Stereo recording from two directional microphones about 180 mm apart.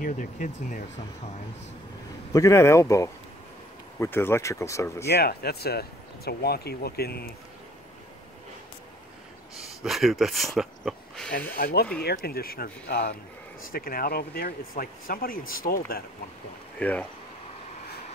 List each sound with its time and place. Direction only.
0.0 s speech: 45° left (ahead or behind)
2.3 s speech: 15° left (ahead or behind)
5.0 s speech: 65° left (ahead or behind)
9.8 s speech: centre (ahead or behind)
11.5 s speech: 55° left (ahead or behind)